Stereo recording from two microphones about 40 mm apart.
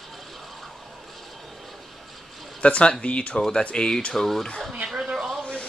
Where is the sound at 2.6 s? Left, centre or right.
Left.